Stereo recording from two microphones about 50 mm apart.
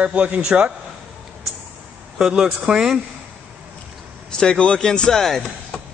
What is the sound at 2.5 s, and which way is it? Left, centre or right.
Speech, right.